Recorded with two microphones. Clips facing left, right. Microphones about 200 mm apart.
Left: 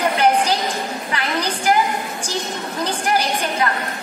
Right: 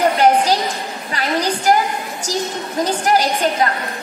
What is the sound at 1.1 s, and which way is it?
Speech, 40° right (ahead or behind).